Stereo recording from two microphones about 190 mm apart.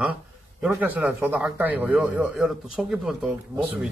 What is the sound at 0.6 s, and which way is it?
Speech, 10° right (ahead or behind).